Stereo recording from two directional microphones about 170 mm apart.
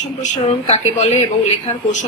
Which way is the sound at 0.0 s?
45° left (ahead or behind).